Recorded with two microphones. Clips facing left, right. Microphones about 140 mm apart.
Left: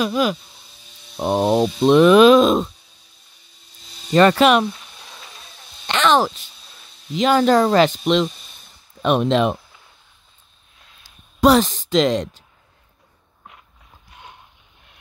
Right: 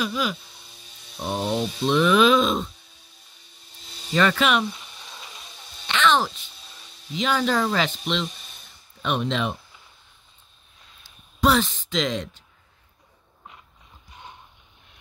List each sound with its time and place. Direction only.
0.0 s speech: 50° left (ahead or behind)
4.1 s speech: 50° left (ahead or behind)
4.7 s a sound: centre (ahead or behind)
5.9 s speech: 45° left (ahead or behind)
11.1 s speech: 40° left (ahead or behind)